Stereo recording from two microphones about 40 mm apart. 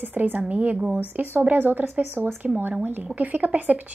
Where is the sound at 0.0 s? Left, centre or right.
Right.